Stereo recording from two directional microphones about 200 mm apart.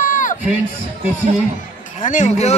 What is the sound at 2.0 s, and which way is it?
Speech, 35° left (ahead or behind).